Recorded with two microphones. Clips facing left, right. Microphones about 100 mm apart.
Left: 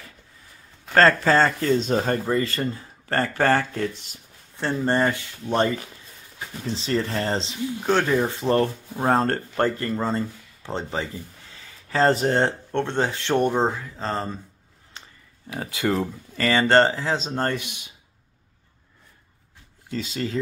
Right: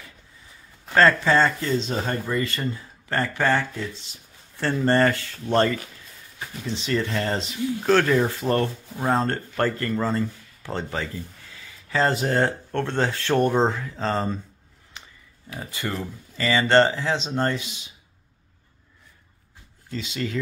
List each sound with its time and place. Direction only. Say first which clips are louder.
0.9 s speech: left 1 dB; 40° left (ahead or behind)
3.7 s speech: left 5 dB; 50° left (ahead or behind)
4.6 s speech: right 2 dB; 15° left (ahead or behind)
6.7 s speech: even; 35° left (ahead or behind)
7.8 s speech: right 2 dB; 15° left (ahead or behind)
8.4 s speech: left 2 dB; 25° left (ahead or behind)
9.1 s speech: left 2 dB; 45° left (ahead or behind)
9.6 s speech: even; 20° left (ahead or behind)
11.5 s speech: left 1 dB; 35° left (ahead or behind); by 14.4 s centre (ahead or behind)
15.0 s a sound: even; 35° left (ahead or behind)
15.6 s speech: left 6 dB; 90° left
16.3 s speech: left 1 dB; 45° left (ahead or behind)
17.6 s speech: even; 60° left (ahead or behind)
19.9 s speech: left 1 dB; 40° left (ahead or behind)